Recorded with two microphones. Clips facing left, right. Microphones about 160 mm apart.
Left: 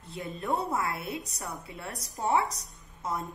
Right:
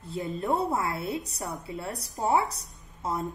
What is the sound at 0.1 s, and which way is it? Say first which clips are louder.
A woman's voice: right 4 dB; 35° right (ahead or behind).